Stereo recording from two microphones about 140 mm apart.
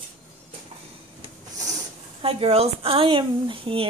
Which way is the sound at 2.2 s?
45° right (ahead or behind).